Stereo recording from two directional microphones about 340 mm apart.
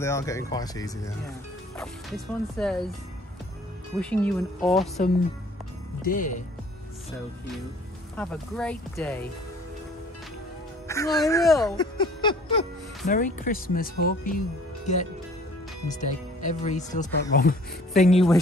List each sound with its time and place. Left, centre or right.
0.0 s speech: centre
4.0 s speech: centre
6.0 s a woman's voice: left
8.2 s speech: centre
10.9 s a woman's voice: centre
16.4 s a woman's voice: left